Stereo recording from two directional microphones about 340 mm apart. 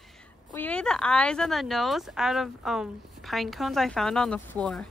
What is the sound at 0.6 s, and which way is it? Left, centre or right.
Speech, centre.